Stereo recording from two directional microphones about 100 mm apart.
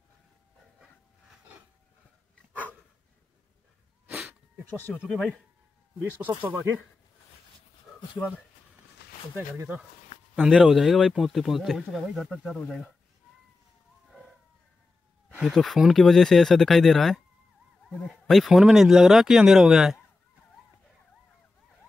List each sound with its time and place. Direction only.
4.7 s speech: 20° left (ahead or behind)
5.0 s speech: centre (ahead or behind)
6.1 s speech: 20° right (ahead or behind)
9.6 s speech: 15° right (ahead or behind)
10.3 s speech: centre (ahead or behind)
15.4 s speech: centre (ahead or behind)